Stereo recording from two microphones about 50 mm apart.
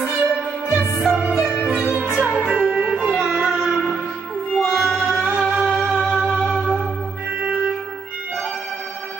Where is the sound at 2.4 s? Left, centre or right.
Right.